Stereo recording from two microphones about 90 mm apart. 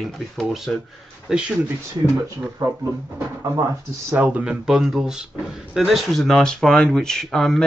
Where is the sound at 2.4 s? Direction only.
25° right (ahead or behind).